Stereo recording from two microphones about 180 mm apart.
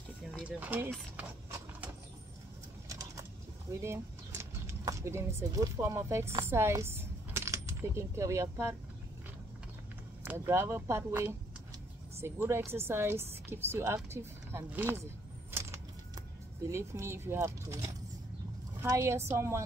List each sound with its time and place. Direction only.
0.4 s speech: 10° right (ahead or behind)
2.9 s pigeon: 20° right (ahead or behind)
3.8 s speech: 15° right (ahead or behind)
10.2 s speech: 15° right (ahead or behind)
15.5 s a sound: 15° right (ahead or behind)
16.6 s speech: 15° right (ahead or behind)